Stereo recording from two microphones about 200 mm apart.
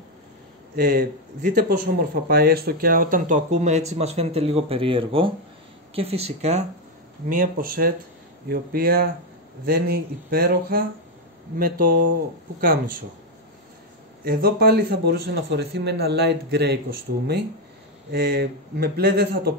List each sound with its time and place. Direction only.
0.7 s a man's voice: 45° right (ahead or behind); by 6.6 s 30° right (ahead or behind)
7.2 s a man's voice: 45° right (ahead or behind)
14.2 s a man's voice: 50° right (ahead or behind)
18.1 s a man's voice: 50° right (ahead or behind)